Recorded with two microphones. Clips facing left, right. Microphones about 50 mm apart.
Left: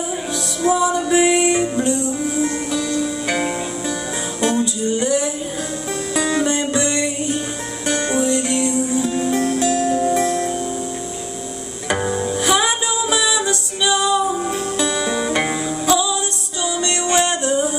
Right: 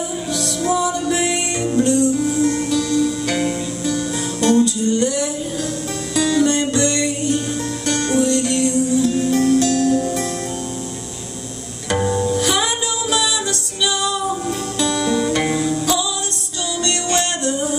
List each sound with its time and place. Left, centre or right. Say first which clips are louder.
0.6 s music: left 3 dB; centre
11.9 s music: right 2 dB; centre